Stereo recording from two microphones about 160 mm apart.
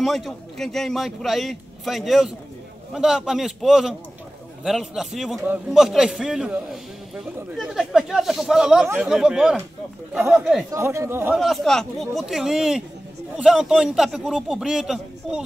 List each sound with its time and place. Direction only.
0.0 s a man's voice: centre (ahead or behind)
10.7 s speech: 15° right (ahead or behind)
11.3 s a man's voice: centre (ahead or behind)